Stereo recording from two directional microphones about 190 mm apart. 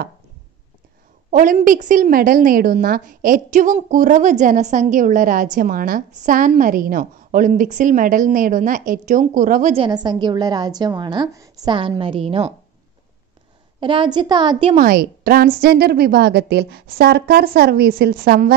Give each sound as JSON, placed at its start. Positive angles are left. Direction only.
{"t": 1.3, "sound": "a woman's voice", "side_deg": -45}
{"t": 9.8, "sound": "a woman's voice", "side_deg": -20}
{"t": 13.7, "sound": "a woman's voice", "side_deg": -25}
{"t": 14.8, "sound": "a woman's voice", "side_deg": -50}